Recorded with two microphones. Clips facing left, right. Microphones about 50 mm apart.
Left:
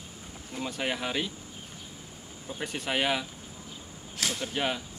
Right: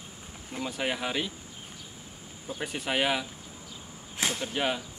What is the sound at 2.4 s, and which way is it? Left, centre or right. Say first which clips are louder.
Speech: right 1 dB; centre.